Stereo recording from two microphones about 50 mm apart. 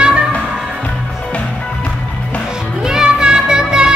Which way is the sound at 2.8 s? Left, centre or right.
Centre.